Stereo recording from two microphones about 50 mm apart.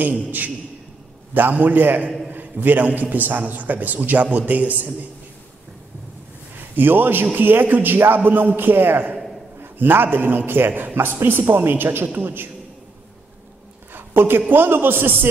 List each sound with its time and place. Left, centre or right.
0.0 s a man's voice: right
6.7 s a man's voice: right
10.7 s a man's voice: right
11.0 s a man's voice: right
13.9 s a sound: right
14.5 s a man's voice: right